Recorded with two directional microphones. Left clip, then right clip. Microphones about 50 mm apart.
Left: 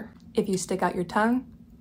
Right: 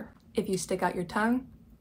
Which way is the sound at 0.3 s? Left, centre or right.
Left.